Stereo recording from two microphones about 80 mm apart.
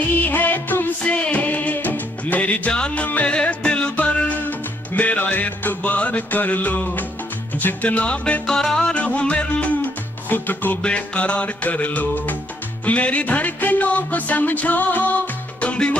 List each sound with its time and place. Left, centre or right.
0.2 s music: left